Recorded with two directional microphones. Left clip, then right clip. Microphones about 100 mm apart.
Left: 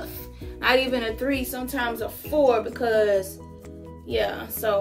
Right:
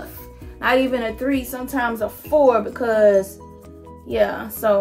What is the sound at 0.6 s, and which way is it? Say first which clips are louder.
Speech: right 3 dB; 35° right (ahead or behind).